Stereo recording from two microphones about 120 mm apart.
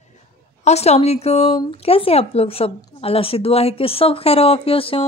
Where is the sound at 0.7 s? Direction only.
60° left (ahead or behind).